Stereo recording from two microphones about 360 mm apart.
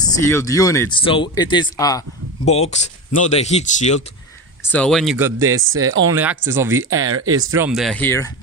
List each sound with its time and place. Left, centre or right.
0.3 s speech: centre
4.6 s speech: centre
6.8 s speech: right
7.3 s speech: centre